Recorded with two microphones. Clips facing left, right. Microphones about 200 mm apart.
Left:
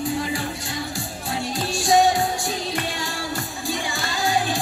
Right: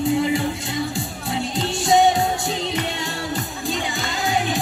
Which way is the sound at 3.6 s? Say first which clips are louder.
Right 1 dB; 20° right (ahead or behind).